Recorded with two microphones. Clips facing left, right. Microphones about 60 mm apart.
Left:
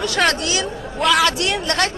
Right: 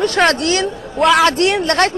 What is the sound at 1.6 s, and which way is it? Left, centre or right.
Speech, right.